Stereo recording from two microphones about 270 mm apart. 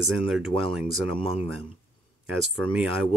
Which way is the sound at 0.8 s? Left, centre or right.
Centre.